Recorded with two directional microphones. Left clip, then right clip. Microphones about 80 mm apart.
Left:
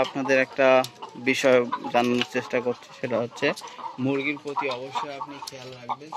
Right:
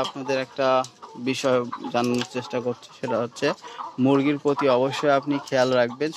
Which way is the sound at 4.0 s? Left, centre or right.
Right.